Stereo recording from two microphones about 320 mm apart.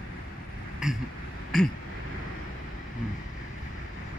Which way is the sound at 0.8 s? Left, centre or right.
Centre.